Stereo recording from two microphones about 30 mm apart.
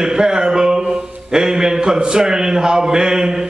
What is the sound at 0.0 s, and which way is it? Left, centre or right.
A man's voice, right.